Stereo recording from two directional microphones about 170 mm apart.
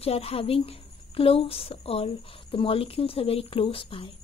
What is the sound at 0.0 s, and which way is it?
A woman's voice, 35° left (ahead or behind).